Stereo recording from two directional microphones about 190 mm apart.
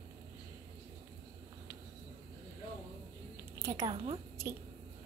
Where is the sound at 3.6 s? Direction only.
20° right (ahead or behind).